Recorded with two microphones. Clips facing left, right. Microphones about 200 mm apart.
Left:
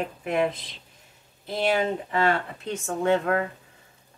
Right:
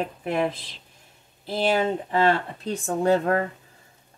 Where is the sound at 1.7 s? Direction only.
30° right (ahead or behind).